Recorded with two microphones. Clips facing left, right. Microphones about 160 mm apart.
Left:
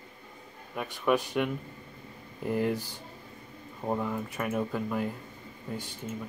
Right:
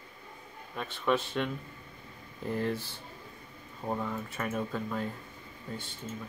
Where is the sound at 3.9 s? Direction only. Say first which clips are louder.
Left 3 dB; 10° left (ahead or behind).